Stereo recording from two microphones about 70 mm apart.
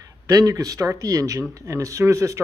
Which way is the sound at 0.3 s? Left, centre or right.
Right.